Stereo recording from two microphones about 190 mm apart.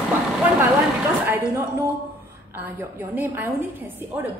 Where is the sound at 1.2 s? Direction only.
10° right (ahead or behind).